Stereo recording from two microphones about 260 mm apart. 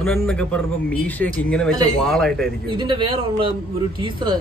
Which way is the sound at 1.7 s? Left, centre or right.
Centre.